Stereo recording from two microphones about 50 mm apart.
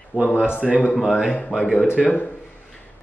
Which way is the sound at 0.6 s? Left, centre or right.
Centre.